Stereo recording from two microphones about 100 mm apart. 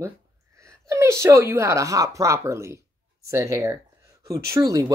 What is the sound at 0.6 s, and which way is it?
Speech, 30° right (ahead or behind).